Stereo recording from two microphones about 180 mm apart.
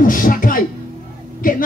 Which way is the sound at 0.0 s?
50° left (ahead or behind).